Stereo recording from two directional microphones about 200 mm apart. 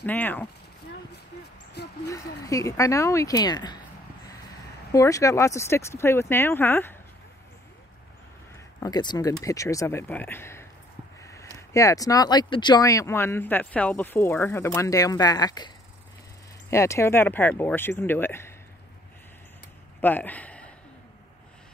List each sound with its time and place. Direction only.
0.0 s speech: 10° left (ahead or behind)
2.0 s speech: 15° left (ahead or behind)
4.9 s speech: 15° left (ahead or behind)
8.7 s speech: 20° left (ahead or behind)
16.7 s speech: 15° left (ahead or behind)
20.0 s a sound: 10° left (ahead or behind)